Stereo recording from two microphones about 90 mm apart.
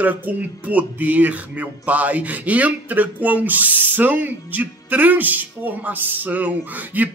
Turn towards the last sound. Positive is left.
turn(degrees=-20)  # may be behind; listen again after turning